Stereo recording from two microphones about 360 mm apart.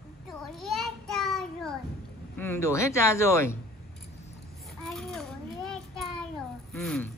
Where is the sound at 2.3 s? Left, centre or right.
Centre.